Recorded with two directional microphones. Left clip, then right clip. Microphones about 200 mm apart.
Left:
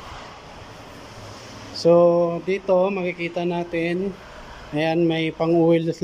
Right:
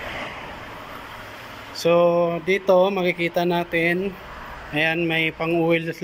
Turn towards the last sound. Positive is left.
turn(degrees=20)  # may be behind; listen again after turning